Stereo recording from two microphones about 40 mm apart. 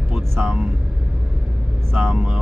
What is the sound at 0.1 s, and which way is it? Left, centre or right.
Vehicle, centre.